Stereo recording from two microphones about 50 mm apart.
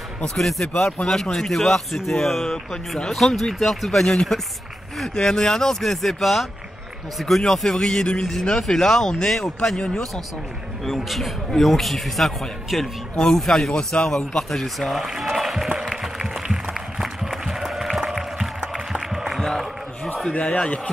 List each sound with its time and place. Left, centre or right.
0.4 s a man's voice: centre
9.8 s speech: centre
10.9 s a man's voice: centre
15.0 s music: centre
20.3 s a man's voice: left